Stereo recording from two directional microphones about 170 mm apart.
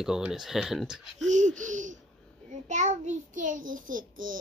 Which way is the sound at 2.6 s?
45° right (ahead or behind).